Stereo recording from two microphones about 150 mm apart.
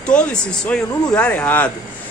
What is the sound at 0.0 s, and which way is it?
Speech, 5° left (ahead or behind).